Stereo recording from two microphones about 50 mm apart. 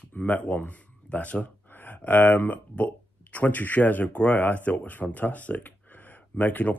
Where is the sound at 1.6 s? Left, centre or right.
Left.